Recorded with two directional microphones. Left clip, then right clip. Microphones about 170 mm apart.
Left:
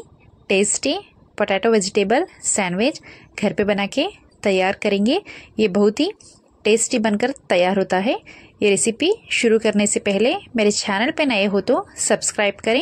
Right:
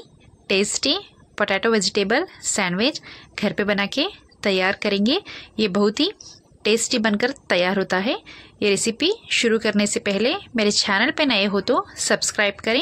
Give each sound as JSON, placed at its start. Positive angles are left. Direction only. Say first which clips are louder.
{"t": 0.5, "sound": "speech", "louder": "left 1 dB", "side_deg": 20}